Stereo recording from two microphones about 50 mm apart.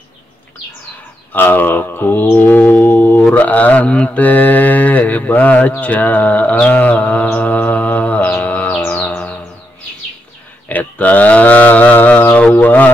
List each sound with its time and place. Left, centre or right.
1.3 s mantra: left
3.3 s speech: left
4.2 s speech: left
7.5 s mantra: left
8.8 s music: left
10.7 s speech: left